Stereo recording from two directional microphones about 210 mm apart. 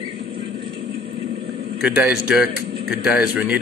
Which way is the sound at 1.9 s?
5° right (ahead or behind).